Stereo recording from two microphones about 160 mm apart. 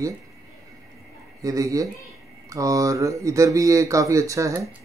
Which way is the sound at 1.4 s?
20° right (ahead or behind).